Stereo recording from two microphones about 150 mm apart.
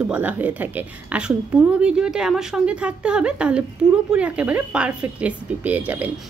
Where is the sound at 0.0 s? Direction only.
10° right (ahead or behind).